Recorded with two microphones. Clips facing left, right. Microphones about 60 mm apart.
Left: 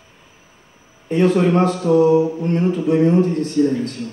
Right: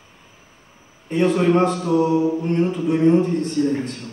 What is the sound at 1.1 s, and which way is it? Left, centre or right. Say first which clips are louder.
A man's voice: left 2 dB; centre.